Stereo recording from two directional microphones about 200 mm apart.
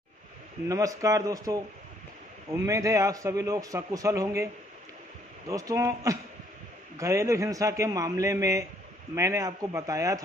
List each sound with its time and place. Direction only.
0.7 s a man's voice: 15° right (ahead or behind)
5.5 s a man's voice: 15° right (ahead or behind)